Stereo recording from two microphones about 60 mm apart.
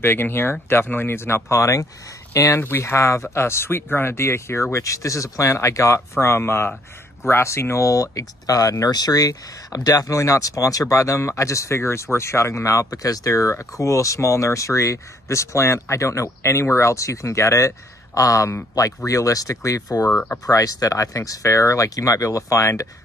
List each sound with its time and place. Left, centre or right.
0.0 s speech: left
1.6 s speech: left
2.6 s speech: left
20.1 s speech: left
20.4 s speech: left